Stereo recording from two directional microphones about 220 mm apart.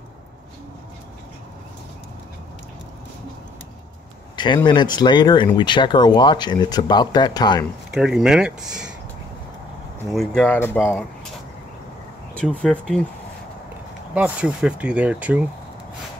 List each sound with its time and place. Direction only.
4.6 s speech: 20° left (ahead or behind)
7.9 s speech: 5° right (ahead or behind)
10.1 s speech: 5° left (ahead or behind)
12.4 s speech: 5° left (ahead or behind)
14.1 s speech: 5° right (ahead or behind)